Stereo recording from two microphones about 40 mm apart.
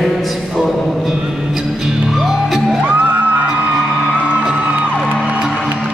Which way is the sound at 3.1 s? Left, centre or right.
Right.